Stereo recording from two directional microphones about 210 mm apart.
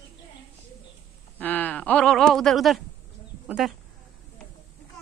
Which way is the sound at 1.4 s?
10° left (ahead or behind).